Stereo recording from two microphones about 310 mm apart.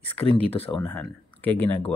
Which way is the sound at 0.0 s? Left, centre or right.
Centre.